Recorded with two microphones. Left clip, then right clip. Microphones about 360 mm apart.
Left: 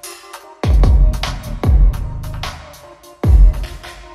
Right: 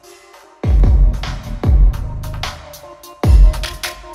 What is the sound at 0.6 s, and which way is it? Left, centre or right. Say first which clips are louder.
Music: left 2 dB; centre.